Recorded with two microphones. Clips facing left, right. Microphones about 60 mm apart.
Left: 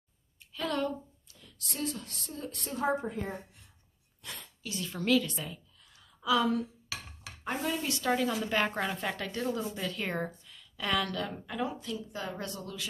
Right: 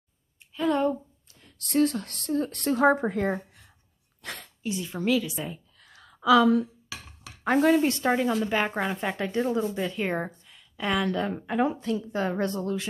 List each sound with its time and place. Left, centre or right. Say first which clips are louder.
0.6 s a sound: right 8 dB; right
1.2 s speech: right 1 dB; right
4.6 s a woman's voice: right 4 dB; centre
5.8 s a sound: right 8 dB; right
7.4 s speech: right 12 dB; right
8.5 s a woman's voice: right 4 dB; centre; by 12.8 s right